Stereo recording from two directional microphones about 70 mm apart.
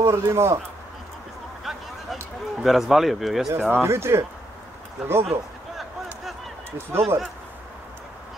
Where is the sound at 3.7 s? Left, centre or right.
Right.